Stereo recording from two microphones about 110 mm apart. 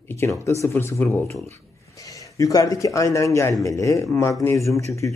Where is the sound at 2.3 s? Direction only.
30° left (ahead or behind).